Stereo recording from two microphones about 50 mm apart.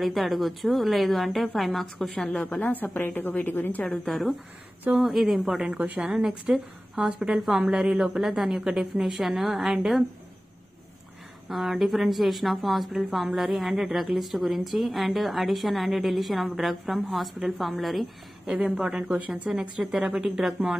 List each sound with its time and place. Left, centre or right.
0.0 s a woman's voice: centre
2.5 s a woman's voice: left
2.8 s a woman's voice: left
4.0 s a woman's voice: centre
5.6 s speech: right
6.0 s a woman's voice: centre
11.5 s a woman's voice: centre
18.5 s speech: right
20.1 s speech: centre